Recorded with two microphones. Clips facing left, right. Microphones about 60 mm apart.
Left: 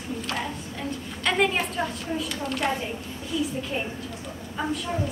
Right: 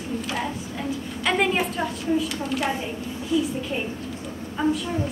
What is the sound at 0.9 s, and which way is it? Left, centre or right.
A woman's voice, centre.